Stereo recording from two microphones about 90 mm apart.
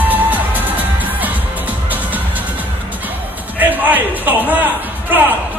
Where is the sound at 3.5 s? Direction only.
20° right (ahead or behind).